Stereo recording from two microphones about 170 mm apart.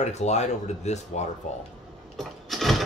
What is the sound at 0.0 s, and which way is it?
Speech, 40° left (ahead or behind).